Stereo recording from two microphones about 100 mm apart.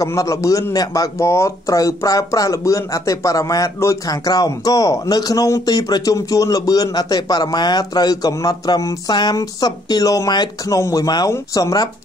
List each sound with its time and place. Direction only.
0.0 s a man's voice: 30° left (ahead or behind)